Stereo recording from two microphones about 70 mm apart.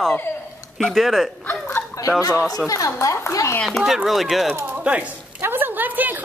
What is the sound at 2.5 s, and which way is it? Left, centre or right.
Speech, left.